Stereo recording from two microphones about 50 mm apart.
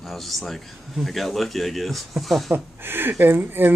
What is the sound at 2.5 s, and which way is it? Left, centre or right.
Speech, right.